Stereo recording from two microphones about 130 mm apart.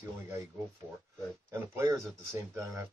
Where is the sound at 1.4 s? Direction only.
20° right (ahead or behind).